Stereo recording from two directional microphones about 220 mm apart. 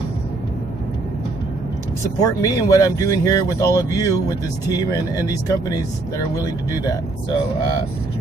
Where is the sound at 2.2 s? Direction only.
15° left (ahead or behind).